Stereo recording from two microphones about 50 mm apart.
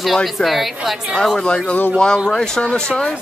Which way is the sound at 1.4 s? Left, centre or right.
Left.